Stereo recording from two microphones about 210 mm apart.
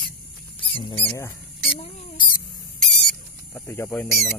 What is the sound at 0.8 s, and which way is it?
Speech, 25° left (ahead or behind).